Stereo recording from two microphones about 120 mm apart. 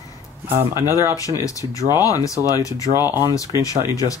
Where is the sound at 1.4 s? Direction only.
30° left (ahead or behind).